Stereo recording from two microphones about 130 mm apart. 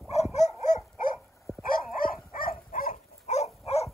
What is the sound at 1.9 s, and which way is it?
Dog, 90° left.